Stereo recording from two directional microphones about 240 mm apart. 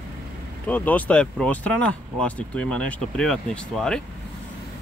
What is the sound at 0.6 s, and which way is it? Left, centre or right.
Speech, centre.